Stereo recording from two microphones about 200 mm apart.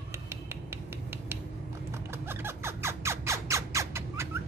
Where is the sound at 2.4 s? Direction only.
10° right (ahead or behind).